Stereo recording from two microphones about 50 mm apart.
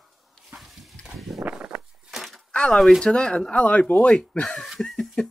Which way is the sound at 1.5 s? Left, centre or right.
Right.